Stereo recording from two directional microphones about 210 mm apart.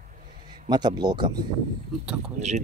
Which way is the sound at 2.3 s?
35° right (ahead or behind).